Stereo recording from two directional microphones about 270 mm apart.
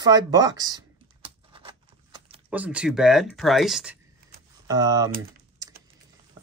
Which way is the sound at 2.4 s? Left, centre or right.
Centre.